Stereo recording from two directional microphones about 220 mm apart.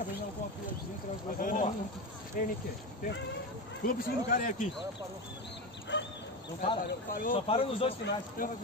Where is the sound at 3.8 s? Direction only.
40° left (ahead or behind).